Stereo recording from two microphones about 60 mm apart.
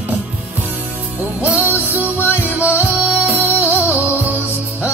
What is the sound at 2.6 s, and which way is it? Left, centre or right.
Music, right.